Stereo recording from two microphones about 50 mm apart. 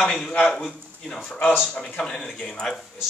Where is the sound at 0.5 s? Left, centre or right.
Centre.